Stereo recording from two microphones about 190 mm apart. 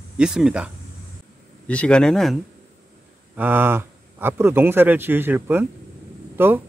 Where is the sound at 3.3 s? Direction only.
10° right (ahead or behind).